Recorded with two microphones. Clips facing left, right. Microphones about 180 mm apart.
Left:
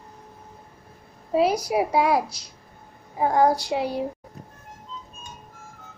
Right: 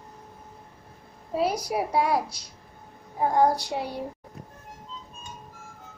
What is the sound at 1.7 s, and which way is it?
Speech, 85° left.